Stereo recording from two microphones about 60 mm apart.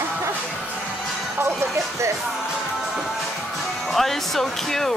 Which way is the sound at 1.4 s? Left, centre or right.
Right.